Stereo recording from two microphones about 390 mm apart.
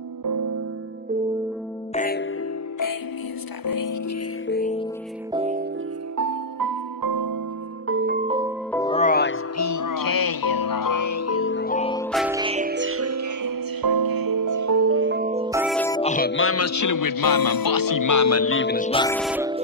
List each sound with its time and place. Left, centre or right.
2.0 s music: left
3.6 s music: left
4.5 s music: left
5.3 s music: centre
6.1 s music: right
7.8 s music: right; by 8.5 s centre
8.7 s music: centre
9.6 s music: left; by 12.1 s centre
12.1 s music: centre
16.0 s speech: centre